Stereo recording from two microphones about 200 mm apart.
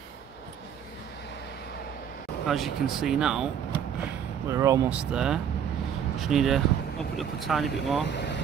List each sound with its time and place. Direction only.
2.4 s speech: centre (ahead or behind)
4.0 s speech: 15° right (ahead or behind)
8.1 s speech: 60° left (ahead or behind)